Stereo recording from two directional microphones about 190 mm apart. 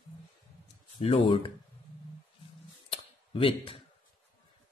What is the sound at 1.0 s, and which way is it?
Speech, 30° left (ahead or behind).